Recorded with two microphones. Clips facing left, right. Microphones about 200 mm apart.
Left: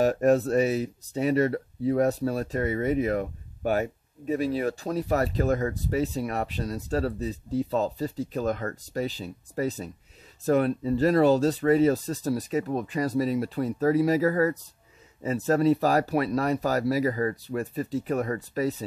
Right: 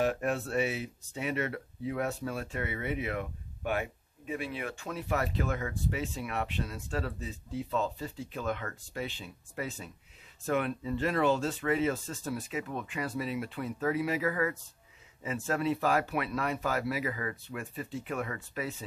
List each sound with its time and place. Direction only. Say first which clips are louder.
0.0 s speech: left 9 dB; 40° left (ahead or behind)